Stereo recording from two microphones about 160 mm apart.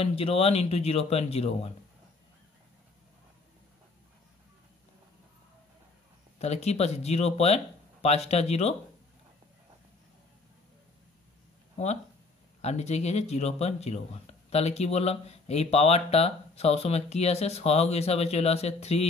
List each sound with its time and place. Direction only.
0.0 s speech: 35° left (ahead or behind)
6.4 s speech: 40° left (ahead or behind)
12.6 s speech: 45° left (ahead or behind)